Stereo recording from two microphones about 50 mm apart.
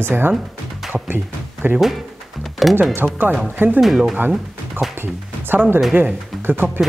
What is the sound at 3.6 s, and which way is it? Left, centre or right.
Speech, right.